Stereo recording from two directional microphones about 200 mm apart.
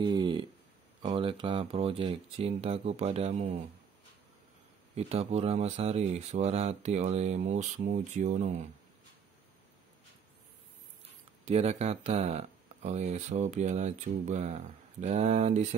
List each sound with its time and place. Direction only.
0.0 s a sound: 25° right (ahead or behind)
1.0 s speech: 25° right (ahead or behind)
4.9 s speech: 30° right (ahead or behind)
11.4 s speech: 35° right (ahead or behind)